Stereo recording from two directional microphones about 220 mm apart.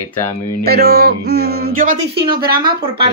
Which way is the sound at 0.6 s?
45° right (ahead or behind).